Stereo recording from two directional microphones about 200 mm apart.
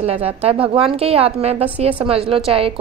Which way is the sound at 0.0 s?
30° right (ahead or behind).